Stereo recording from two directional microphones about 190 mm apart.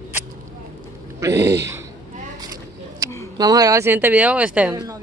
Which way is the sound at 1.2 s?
15° right (ahead or behind).